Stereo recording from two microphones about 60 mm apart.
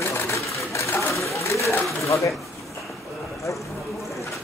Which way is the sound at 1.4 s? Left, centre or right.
Left.